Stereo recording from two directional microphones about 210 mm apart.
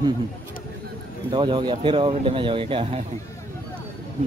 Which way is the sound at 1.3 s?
20° right (ahead or behind).